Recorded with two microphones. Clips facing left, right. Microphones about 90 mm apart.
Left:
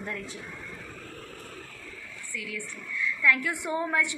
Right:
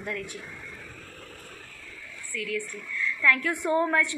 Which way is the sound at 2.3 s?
20° left (ahead or behind).